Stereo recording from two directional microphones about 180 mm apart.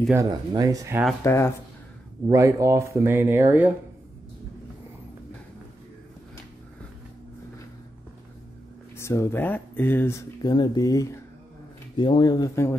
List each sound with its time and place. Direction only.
0.1 s speech: 20° right (ahead or behind)
1.2 s speech: 15° left (ahead or behind)
2.2 s speech: 15° right (ahead or behind)
8.9 s speech: 15° left (ahead or behind)